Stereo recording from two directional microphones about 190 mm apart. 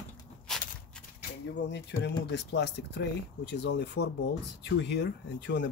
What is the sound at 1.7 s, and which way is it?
Speech, 65° left (ahead or behind).